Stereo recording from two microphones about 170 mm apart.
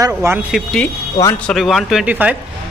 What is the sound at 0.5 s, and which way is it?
Speech, 5° left (ahead or behind).